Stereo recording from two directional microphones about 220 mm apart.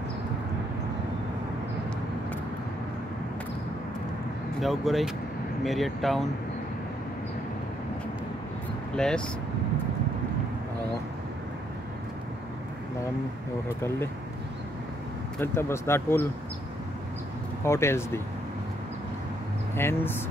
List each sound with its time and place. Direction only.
4.6 s speech: centre (ahead or behind)
8.9 s speech: 5° left (ahead or behind)
15.4 s speech: 10° left (ahead or behind)
17.6 s speech: 10° left (ahead or behind)
19.7 s speech: 10° left (ahead or behind)